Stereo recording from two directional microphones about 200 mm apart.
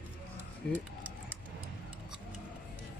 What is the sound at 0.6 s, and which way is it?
Speech, 5° left (ahead or behind).